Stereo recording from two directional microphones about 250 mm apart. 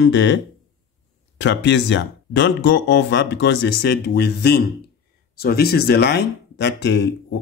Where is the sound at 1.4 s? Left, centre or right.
Left.